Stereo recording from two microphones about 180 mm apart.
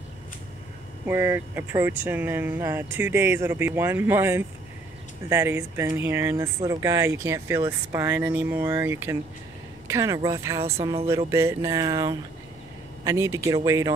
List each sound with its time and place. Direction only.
1.0 s speech: 15° right (ahead or behind)